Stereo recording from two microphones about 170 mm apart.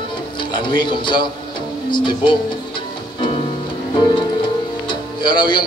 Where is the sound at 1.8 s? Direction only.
30° left (ahead or behind).